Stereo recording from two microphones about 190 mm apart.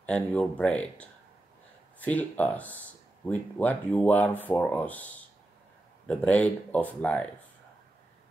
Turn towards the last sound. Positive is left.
turn(degrees=5)  # may be behind; listen again after turning